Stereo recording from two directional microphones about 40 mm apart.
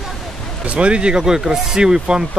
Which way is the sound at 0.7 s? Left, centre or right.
Right.